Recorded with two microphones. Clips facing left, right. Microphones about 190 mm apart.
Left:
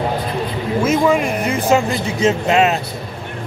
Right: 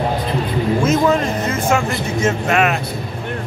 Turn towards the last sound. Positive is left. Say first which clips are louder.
# left 2 dB
turn(degrees=20)  # may be behind; listen again after turning